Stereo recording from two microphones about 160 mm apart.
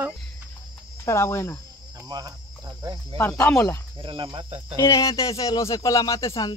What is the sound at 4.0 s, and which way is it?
Speech, 35° right (ahead or behind).